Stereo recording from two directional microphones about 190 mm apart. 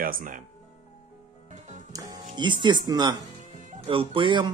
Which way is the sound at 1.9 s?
20° right (ahead or behind).